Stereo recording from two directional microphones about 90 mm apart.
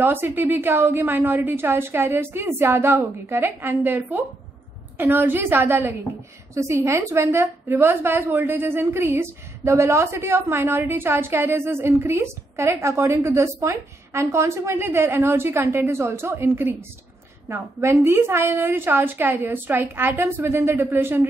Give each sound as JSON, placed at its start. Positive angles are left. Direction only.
{"t": 0.0, "sound": "a woman's voice", "side_deg": -25}